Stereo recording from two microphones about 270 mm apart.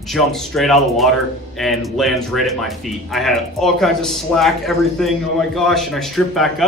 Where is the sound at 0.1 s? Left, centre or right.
Centre.